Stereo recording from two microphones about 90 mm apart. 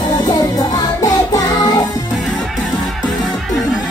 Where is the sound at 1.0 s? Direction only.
40° left (ahead or behind).